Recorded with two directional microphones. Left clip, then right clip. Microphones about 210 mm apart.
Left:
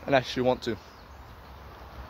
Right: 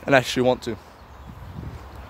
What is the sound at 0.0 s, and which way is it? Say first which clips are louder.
Speech: right 6 dB; 45° right (ahead or behind).